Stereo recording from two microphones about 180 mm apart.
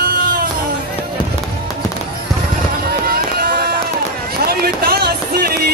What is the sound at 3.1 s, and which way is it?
Music, 60° right (ahead or behind).